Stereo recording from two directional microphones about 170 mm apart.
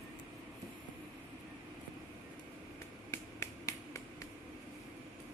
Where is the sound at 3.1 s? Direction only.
15° left (ahead or behind).